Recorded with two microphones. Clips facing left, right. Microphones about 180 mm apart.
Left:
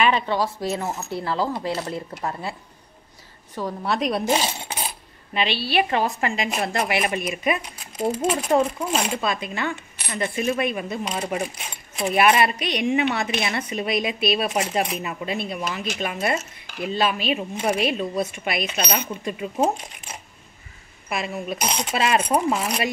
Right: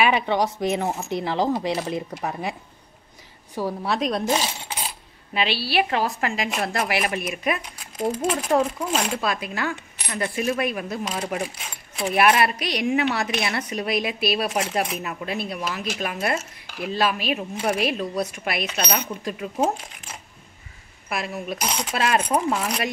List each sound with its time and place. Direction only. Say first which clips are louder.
0.0 s speech: right 1 dB; 15° right (ahead or behind)
3.5 s speech: even; 5° right (ahead or behind)
5.3 s speech: left 1 dB; 5° right (ahead or behind)
21.1 s speech: left 1 dB; centre (ahead or behind)